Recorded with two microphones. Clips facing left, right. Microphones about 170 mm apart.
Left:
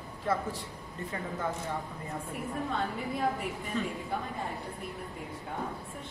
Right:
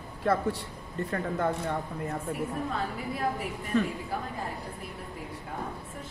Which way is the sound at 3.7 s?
65° right (ahead or behind).